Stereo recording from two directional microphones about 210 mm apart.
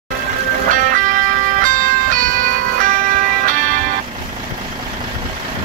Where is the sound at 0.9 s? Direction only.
40° right (ahead or behind).